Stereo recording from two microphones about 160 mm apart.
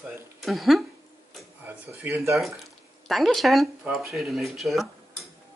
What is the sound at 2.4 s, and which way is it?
Speech, centre (ahead or behind).